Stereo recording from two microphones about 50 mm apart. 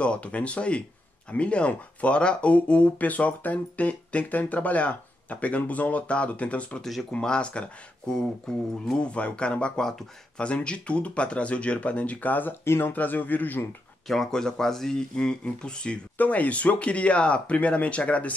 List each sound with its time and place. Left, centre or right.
0.0 s speech: left
6.8 s speech: centre
7.1 s speech: centre
10.4 s speech: left
12.6 s speech: left
12.9 s a man's voice: left
14.0 s speech: centre
16.2 s speech: left